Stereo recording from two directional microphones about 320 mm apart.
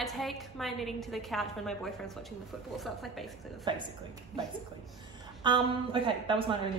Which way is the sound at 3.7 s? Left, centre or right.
Centre.